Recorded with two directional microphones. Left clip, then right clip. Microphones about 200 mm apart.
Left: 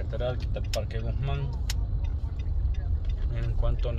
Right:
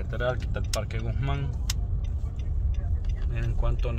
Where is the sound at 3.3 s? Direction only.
20° right (ahead or behind).